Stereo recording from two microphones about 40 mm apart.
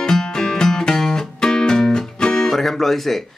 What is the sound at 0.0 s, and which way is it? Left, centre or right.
Music, centre.